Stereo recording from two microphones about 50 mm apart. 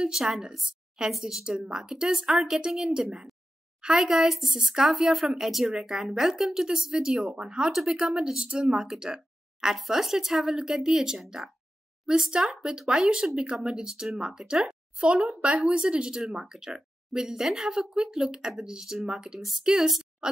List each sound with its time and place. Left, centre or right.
0.0 s a woman's voice: centre
0.7 s a sound: centre
1.2 s a child's voice: centre